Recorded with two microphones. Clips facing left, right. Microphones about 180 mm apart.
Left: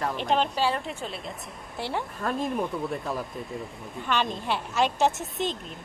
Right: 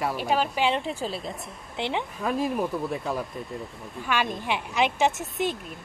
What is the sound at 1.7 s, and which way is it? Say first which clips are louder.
Speech: right 2 dB; 20° right (ahead or behind).